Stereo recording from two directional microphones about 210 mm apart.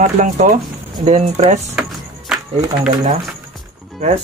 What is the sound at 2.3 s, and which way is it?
Music, centre (ahead or behind).